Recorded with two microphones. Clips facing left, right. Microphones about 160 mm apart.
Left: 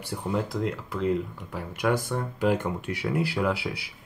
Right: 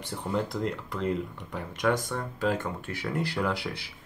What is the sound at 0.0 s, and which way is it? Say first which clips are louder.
Speech: left 1 dB; 5° left (ahead or behind).